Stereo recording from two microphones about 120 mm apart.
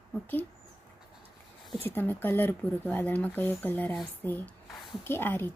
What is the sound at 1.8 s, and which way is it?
Speech, 15° left (ahead or behind).